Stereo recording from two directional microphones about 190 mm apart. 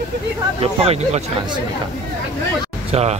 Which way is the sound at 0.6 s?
30° right (ahead or behind).